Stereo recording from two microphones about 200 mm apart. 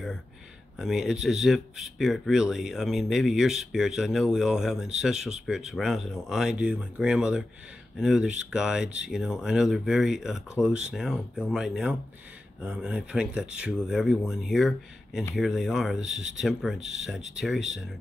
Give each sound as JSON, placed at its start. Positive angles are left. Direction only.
{"t": 0.7, "sound": "speech", "side_deg": -5}